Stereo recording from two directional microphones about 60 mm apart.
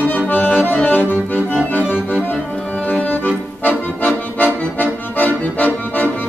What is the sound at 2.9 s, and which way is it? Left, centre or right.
Accordion, left.